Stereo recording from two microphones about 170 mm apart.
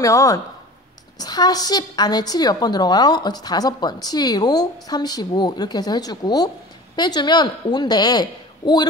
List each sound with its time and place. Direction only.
0.0 s a woman's voice: 20° left (ahead or behind)